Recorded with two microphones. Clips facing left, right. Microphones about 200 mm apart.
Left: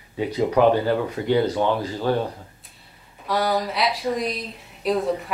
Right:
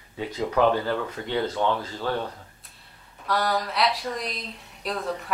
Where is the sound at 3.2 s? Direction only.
Centre (ahead or behind).